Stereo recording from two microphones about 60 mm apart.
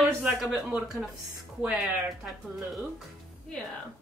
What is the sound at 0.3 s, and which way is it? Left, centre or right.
Speech, right.